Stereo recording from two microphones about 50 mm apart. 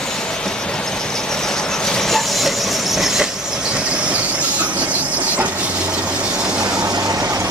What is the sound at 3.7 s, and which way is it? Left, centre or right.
Train, right.